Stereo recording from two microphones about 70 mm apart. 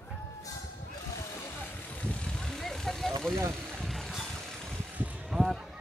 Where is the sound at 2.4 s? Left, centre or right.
Centre.